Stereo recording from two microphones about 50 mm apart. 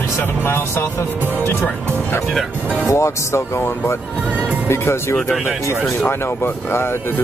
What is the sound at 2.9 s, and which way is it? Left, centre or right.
Speech, left.